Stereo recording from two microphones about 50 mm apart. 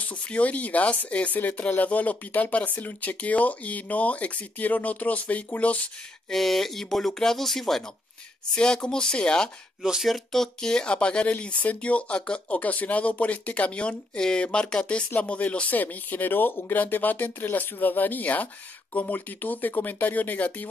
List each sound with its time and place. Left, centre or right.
0.0 s speech: left
6.3 s speech: centre
8.5 s speech: centre
9.8 s speech: centre
10.0 s speech: centre; by 11.3 s left
11.3 s speech: left
16.7 s speech: left